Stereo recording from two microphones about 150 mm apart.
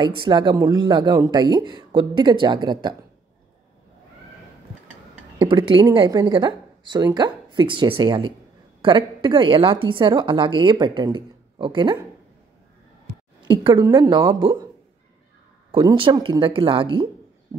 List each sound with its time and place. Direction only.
0.0 s a woman's voice: 30° right (ahead or behind)
5.4 s a woman's voice: 35° right (ahead or behind)
13.5 s a woman's voice: 30° right (ahead or behind)
15.7 s a woman's voice: 30° right (ahead or behind)